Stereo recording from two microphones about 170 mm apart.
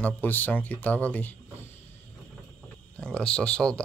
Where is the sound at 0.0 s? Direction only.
10° left (ahead or behind).